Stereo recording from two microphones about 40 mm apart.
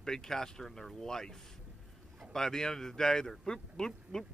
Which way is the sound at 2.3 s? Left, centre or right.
Centre.